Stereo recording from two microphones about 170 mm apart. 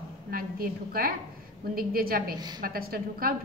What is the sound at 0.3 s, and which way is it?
A woman's voice, 60° right (ahead or behind).